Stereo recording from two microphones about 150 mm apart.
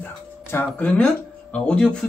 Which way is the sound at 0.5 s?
10° left (ahead or behind).